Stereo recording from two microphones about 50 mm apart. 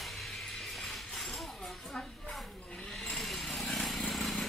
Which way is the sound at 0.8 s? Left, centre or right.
Centre.